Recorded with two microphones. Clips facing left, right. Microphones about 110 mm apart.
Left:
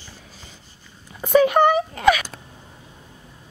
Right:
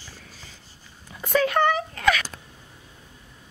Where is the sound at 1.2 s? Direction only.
20° left (ahead or behind).